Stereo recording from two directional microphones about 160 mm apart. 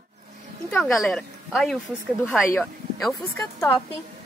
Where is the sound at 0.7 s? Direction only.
5° left (ahead or behind).